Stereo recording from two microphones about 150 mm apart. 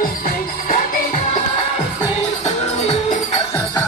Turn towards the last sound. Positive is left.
turn(degrees=45)  # may be behind; listen again after turning